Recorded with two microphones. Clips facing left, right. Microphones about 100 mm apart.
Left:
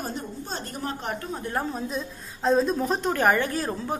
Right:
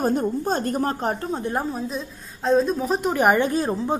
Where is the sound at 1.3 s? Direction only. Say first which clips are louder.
Right 4 dB; 20° right (ahead or behind).